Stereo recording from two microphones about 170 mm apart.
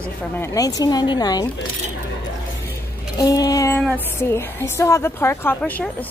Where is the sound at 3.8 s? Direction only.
10° left (ahead or behind).